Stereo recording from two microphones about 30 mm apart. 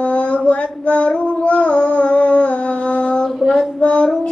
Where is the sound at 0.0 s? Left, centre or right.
Left.